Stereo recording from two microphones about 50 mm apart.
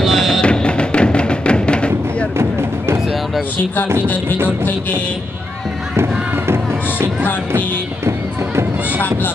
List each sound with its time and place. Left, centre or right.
0.0 s music: centre
0.4 s music: centre
5.9 s music: right